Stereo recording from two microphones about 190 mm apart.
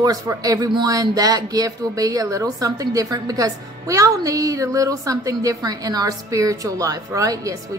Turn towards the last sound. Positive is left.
turn(degrees=-15)  # may be behind; listen again after turning